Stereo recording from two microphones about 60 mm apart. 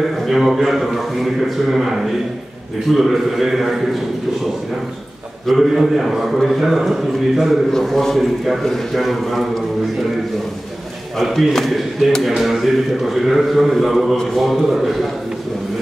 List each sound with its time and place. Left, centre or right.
0.3 s a man's voice: centre
5.5 s a man's voice: centre
11.1 s a man's voice: centre